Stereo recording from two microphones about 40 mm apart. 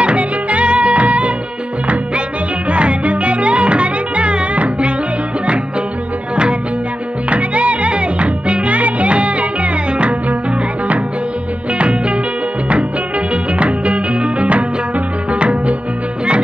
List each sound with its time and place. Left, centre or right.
0.0 s music: right
2.7 s music: right
7.2 s music: right
11.8 s music: right
13.3 s music: right